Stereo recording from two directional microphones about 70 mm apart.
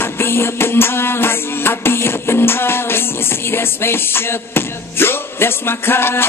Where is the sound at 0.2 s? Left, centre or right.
Left.